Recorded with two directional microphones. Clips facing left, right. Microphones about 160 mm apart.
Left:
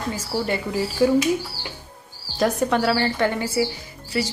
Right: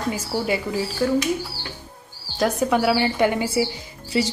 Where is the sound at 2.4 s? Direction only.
Centre (ahead or behind); by 4.2 s 20° right (ahead or behind).